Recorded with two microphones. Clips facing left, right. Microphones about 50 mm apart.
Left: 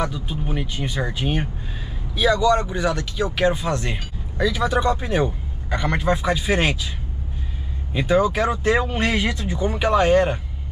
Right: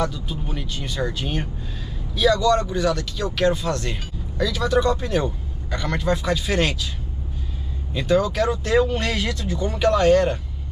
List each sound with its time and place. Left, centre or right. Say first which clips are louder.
0.0 s speech: even; centre
7.9 s speech: left 2 dB; centre